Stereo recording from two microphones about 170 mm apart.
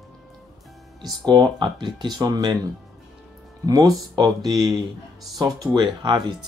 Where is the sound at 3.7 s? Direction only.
20° right (ahead or behind).